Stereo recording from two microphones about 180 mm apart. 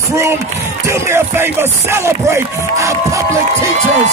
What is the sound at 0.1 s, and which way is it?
Music, 15° right (ahead or behind).